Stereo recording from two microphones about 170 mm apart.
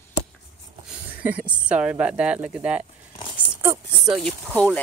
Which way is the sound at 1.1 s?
10° right (ahead or behind).